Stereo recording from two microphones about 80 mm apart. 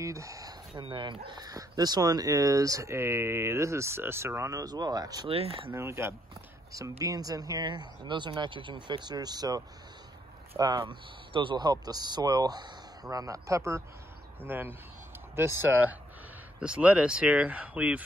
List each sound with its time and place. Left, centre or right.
0.0 s a sound: right
0.7 s speech: right
1.4 s speech: right
5.7 s speech: right
7.1 s speech: right
8.0 s speech: right
10.6 s speech: right
14.4 s speech: right